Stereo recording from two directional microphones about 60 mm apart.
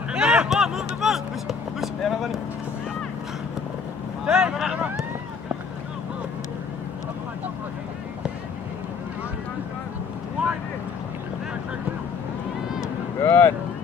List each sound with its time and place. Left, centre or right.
0.1 s a sound: centre
0.5 s vehicle: centre
4.3 s vehicle: centre
13.2 s boat: left